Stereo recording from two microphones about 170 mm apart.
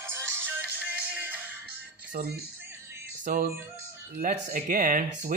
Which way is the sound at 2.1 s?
65° right (ahead or behind).